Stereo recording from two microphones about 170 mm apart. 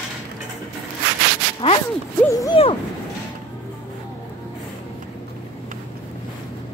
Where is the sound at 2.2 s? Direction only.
20° left (ahead or behind).